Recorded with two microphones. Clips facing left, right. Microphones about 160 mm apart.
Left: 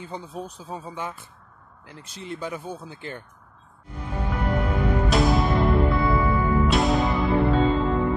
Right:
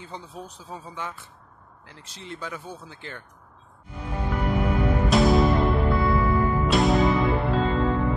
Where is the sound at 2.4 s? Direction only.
15° left (ahead or behind).